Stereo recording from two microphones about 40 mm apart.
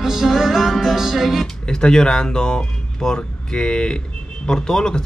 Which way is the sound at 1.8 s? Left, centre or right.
Left.